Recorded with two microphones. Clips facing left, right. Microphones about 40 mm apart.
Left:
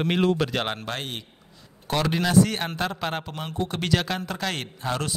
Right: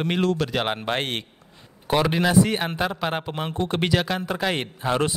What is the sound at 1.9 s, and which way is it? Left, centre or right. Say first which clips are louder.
Speech: right 2 dB; centre.